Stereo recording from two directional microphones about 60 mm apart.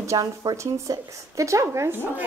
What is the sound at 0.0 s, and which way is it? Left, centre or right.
Speech, right.